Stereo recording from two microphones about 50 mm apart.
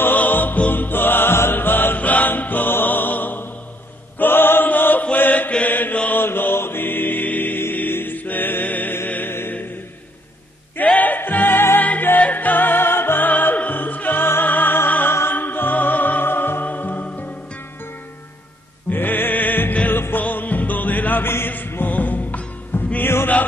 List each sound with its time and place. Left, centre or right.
0.0 s music: left
2.0 s music: left
4.2 s chant: left
5.1 s mantra: left
7.7 s music: left
10.8 s music: left
18.9 s music: left
20.2 s music: left
22.9 s heart sounds: left